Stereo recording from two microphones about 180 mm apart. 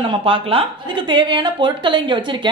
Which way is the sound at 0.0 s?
30° right (ahead or behind).